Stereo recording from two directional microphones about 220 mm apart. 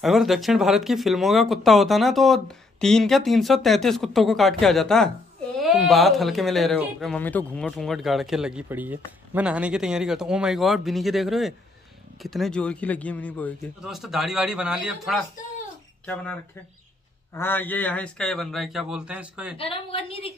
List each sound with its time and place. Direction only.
0.0 s speech: centre (ahead or behind)
17.3 s speech: 10° left (ahead or behind); by 19.5 s 5° right (ahead or behind)
19.5 s a woman's voice: 25° left (ahead or behind)